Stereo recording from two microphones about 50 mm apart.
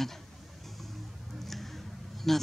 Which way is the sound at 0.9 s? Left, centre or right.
Centre.